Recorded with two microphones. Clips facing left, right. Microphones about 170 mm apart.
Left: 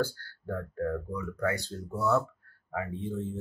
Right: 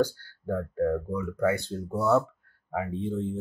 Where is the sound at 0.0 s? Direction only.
20° right (ahead or behind).